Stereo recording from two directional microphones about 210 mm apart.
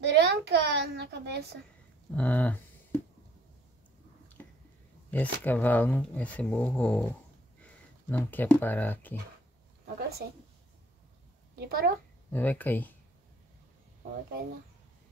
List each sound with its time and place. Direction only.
0.1 s a child's voice: 50° right (ahead or behind)
2.0 s speech: 5° left (ahead or behind)
4.4 s a sound: 10° left (ahead or behind)
5.1 s speech: 10° left (ahead or behind)
9.9 s speech: 50° right (ahead or behind)
11.5 s speech: 50° right (ahead or behind)
12.3 s speech: 10° left (ahead or behind)